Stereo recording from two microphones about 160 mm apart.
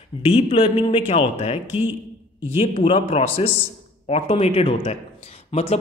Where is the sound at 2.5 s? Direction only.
35° left (ahead or behind).